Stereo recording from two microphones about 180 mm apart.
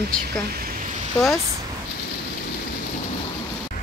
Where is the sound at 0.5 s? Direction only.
55° right (ahead or behind).